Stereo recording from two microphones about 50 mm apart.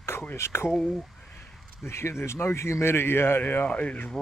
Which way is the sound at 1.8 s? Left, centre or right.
Left.